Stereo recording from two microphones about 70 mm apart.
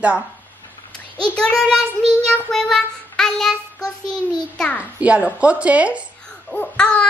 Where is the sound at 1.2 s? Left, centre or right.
Centre.